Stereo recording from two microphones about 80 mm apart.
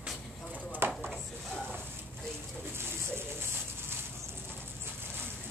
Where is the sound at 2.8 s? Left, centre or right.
Right.